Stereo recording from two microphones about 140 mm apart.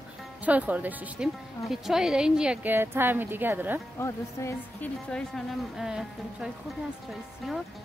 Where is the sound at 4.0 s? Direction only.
20° left (ahead or behind).